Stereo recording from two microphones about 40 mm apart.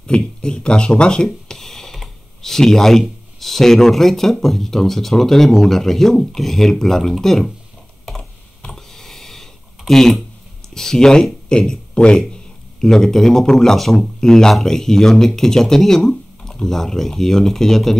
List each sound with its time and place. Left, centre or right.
0.0 s speech: left; by 7.5 s centre
8.7 s a sound: centre
10.7 s speech: centre
12.8 s speech: centre